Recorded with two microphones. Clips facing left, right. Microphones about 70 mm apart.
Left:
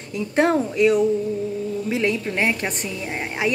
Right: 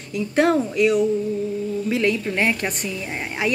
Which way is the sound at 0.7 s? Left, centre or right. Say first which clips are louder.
Left 3 dB; left.